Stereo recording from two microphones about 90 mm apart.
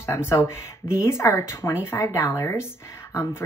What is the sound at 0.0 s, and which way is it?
Speech, 30° left (ahead or behind).